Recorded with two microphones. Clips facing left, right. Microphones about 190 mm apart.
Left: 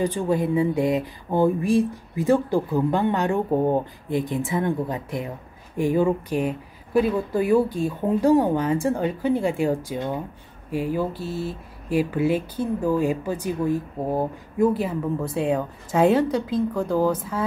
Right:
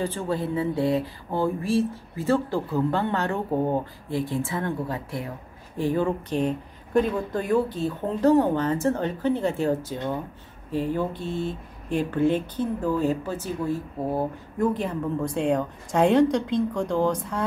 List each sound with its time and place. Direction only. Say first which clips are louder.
0.0 s speech: left 5 dB; 15° left (ahead or behind)